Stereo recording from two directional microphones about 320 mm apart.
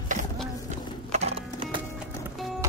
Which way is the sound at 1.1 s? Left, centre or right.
Centre.